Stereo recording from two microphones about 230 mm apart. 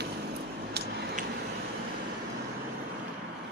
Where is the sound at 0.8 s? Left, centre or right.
Right.